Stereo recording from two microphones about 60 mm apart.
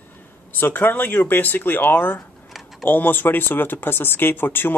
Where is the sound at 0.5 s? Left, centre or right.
Left.